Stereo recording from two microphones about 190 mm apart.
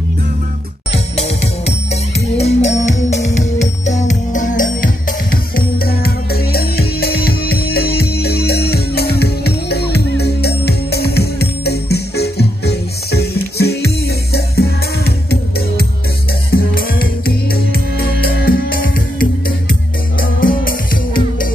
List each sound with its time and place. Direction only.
0.9 s music: 35° left (ahead or behind)